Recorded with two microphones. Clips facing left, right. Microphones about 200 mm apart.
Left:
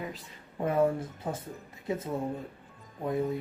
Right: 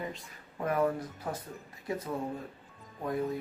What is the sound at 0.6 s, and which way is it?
Speech, 25° left (ahead or behind).